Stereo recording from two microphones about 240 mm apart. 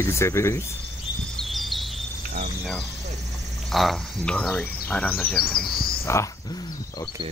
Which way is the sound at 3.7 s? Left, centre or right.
Centre.